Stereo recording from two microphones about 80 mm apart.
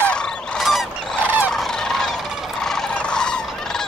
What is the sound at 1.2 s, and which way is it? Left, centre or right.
Fowl, right.